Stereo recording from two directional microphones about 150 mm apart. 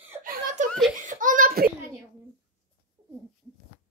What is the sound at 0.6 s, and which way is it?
Belly laugh, 55° right (ahead or behind).